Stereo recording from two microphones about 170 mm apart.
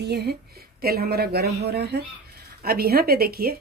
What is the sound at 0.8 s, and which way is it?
A woman's voice, 65° right (ahead or behind).